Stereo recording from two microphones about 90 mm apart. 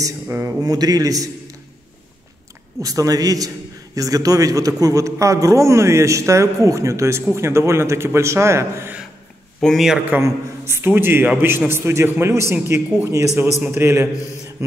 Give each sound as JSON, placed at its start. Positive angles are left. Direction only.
{"t": 0.3, "sound": "a man's voice", "side_deg": -25}
{"t": 0.6, "sound": "a man's voice", "side_deg": -45}
{"t": 2.8, "sound": "a man's voice", "side_deg": -40}
{"t": 9.6, "sound": "a man's voice", "side_deg": 0}
{"t": 10.0, "sound": "a man's voice", "side_deg": -25}